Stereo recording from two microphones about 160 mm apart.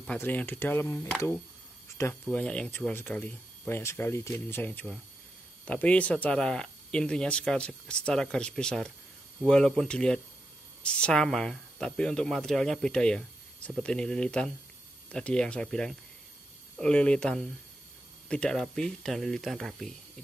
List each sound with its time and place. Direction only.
0.0 s speech: 10° left (ahead or behind)
2.3 s speech: 5° left (ahead or behind)